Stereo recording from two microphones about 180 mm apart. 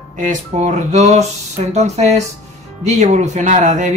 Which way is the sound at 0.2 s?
40° right (ahead or behind).